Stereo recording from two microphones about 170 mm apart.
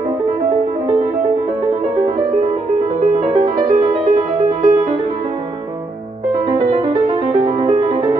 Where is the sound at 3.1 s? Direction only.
25° right (ahead or behind).